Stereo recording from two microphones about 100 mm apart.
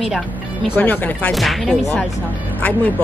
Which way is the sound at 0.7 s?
15° left (ahead or behind).